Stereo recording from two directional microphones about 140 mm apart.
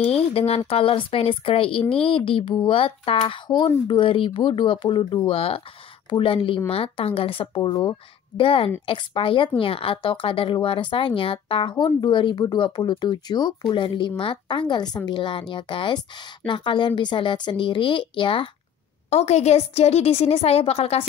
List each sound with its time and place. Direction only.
0.0 s a woman's voice: 45° left (ahead or behind)
19.0 s a woman's voice: 50° left (ahead or behind)